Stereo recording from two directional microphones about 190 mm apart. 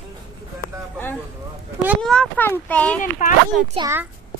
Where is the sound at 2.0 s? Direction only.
5° left (ahead or behind).